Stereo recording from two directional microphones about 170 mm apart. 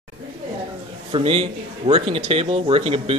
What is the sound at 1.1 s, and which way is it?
A man's voice, 35° right (ahead or behind).